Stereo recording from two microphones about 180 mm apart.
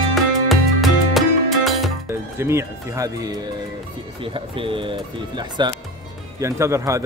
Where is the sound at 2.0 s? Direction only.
15° right (ahead or behind).